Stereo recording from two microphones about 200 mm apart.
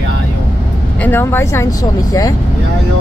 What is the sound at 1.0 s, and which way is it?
Speech, 10° left (ahead or behind).